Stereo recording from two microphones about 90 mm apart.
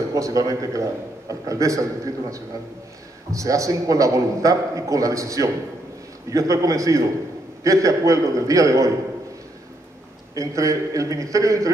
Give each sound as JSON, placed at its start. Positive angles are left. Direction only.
{"t": 0.1, "sound": "a man's voice", "side_deg": -40}
{"t": 10.3, "sound": "a man's voice", "side_deg": -35}